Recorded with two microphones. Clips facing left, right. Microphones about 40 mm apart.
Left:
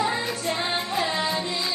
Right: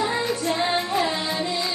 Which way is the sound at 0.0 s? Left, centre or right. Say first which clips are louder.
Right 2 dB; centre.